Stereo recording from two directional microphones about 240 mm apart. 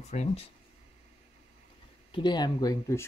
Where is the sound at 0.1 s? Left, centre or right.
Left.